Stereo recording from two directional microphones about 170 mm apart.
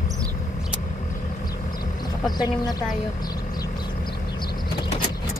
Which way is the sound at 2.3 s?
25° left (ahead or behind).